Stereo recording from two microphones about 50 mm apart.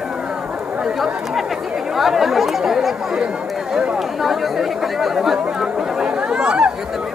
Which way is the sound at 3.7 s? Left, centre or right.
Right.